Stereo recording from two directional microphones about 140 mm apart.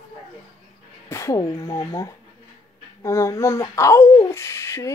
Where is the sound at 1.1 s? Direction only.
20° left (ahead or behind).